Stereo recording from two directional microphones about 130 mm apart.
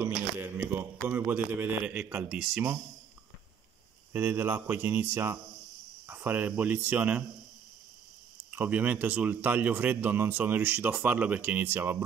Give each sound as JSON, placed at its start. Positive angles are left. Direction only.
{"t": 0.0, "sound": "a man's voice", "side_deg": -15}
{"t": 4.1, "sound": "speech", "side_deg": -15}
{"t": 6.0, "sound": "cricket", "side_deg": -15}
{"t": 6.9, "sound": "speech", "side_deg": -10}
{"t": 8.5, "sound": "speech", "side_deg": -15}